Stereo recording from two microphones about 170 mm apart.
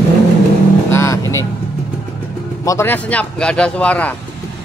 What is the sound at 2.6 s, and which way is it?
A man's voice, 15° left (ahead or behind).